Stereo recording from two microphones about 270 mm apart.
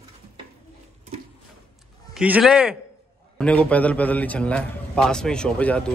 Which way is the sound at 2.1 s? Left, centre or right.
Centre.